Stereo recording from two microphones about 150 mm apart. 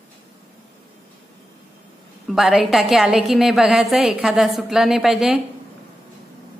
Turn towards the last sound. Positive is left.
turn(degrees=-5)  # may be behind; listen again after turning